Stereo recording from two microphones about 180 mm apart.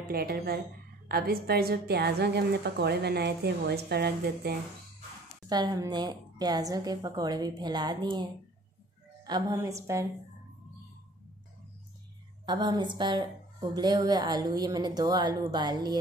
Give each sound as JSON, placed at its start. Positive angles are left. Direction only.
{"t": 0.1, "sound": "a woman's voice", "side_deg": -60}
{"t": 5.5, "sound": "a woman's voice", "side_deg": -20}
{"t": 12.4, "sound": "a woman's voice", "side_deg": -25}